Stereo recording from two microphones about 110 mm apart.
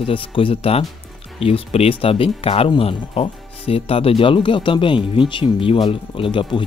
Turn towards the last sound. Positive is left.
turn(degrees=50)  # may be behind; listen again after turning